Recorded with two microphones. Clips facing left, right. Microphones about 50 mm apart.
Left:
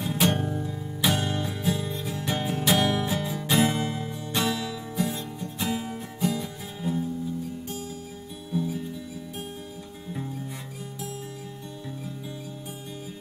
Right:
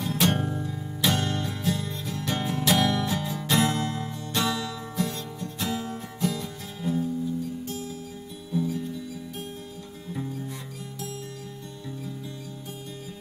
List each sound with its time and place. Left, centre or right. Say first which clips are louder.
0.0 s music: even; centre
0.4 s music: even; centre
1.0 s music: even; centre
8.5 s music: right 1 dB; centre